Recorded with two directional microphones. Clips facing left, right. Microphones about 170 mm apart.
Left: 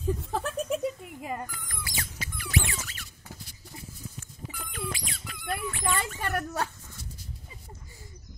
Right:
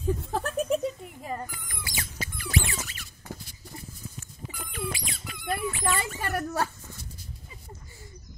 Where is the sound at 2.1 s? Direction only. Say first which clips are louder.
Right 1 dB; 30° right (ahead or behind).